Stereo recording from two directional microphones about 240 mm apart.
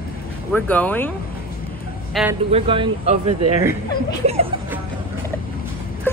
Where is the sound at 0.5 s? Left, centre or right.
Centre.